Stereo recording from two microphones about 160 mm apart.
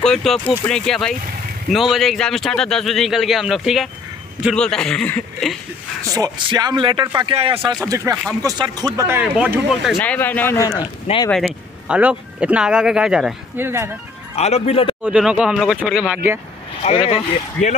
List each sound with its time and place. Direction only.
0.0 s speech: centre (ahead or behind)
6.1 s speech: 25° right (ahead or behind)
7.8 s speech: 15° right (ahead or behind)
9.9 s a man's voice: 10° left (ahead or behind)
11.2 s speech: 5° left (ahead or behind); by 13.8 s 15° right (ahead or behind)
14.3 s speech: 40° left (ahead or behind)
15.0 s speech: 5° right (ahead or behind)
16.8 s speech: 40° left (ahead or behind)